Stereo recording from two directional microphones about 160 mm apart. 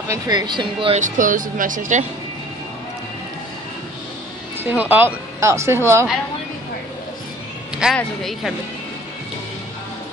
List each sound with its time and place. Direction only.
0.1 s speech: 25° right (ahead or behind)
0.9 s speech: 50° right (ahead or behind)
4.6 s speech: 10° right (ahead or behind)
7.8 s speech: 5° left (ahead or behind)